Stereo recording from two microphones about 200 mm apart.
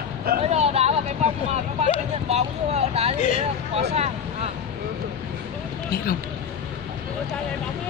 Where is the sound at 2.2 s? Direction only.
30° right (ahead or behind).